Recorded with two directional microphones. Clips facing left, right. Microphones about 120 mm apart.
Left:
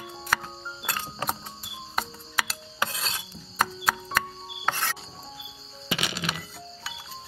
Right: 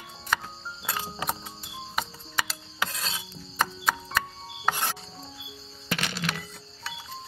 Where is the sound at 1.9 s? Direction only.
Centre (ahead or behind).